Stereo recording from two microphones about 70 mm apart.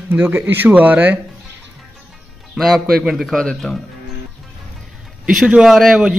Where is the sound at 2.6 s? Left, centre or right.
Centre.